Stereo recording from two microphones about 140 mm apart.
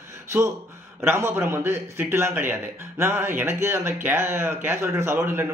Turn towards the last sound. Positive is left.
turn(degrees=-15)  # may be behind; listen again after turning